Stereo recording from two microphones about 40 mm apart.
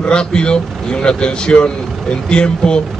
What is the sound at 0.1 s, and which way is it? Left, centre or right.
Speech, left.